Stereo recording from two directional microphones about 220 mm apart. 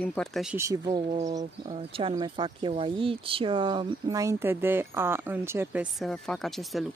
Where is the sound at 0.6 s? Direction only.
15° right (ahead or behind).